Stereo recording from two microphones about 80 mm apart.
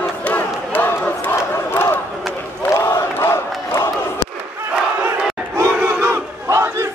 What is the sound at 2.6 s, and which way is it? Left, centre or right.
Crowd, left.